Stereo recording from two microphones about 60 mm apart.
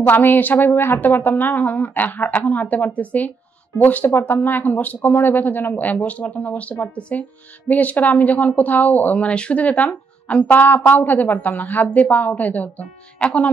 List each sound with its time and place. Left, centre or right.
0.0 s a woman's voice: left